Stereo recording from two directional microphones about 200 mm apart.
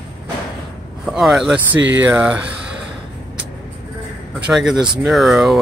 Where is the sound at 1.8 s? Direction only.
65° right (ahead or behind).